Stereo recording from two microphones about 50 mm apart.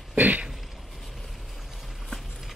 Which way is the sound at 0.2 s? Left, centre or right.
Right.